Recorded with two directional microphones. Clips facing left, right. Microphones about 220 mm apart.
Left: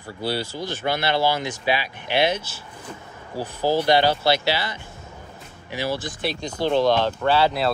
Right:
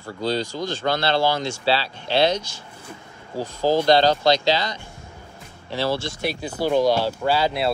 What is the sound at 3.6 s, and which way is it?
Speech, 10° left (ahead or behind).